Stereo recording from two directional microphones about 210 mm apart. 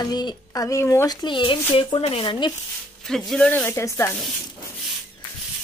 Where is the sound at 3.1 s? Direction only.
5° left (ahead or behind).